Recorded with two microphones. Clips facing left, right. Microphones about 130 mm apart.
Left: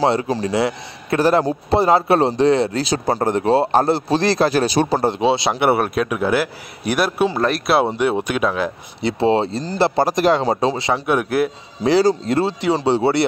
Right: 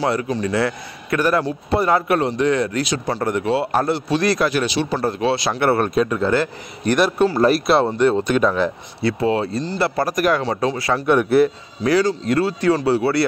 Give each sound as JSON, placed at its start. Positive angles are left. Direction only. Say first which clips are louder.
{"t": 0.0, "sound": "a man's voice", "louder": "left 3 dB", "side_deg": 30}
{"t": 5.0, "sound": "a man's voice", "louder": "left 2 dB", "side_deg": 25}
{"t": 7.8, "sound": "a man's voice", "louder": "right 2 dB", "side_deg": 10}
{"t": 9.0, "sound": "speech", "louder": "left 2 dB", "side_deg": 30}
{"t": 11.1, "sound": "a man's voice", "louder": "right 5 dB", "side_deg": 5}
{"t": 11.8, "sound": "speech", "louder": "left 2 dB", "side_deg": 25}